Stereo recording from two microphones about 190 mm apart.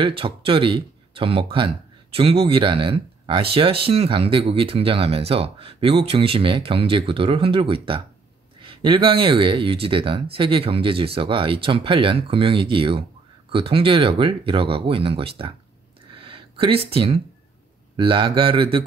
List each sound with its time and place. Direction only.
0.0 s speech: 30° right (ahead or behind)
16.2 s a sound: 30° right (ahead or behind)
17.9 s speech: 25° right (ahead or behind)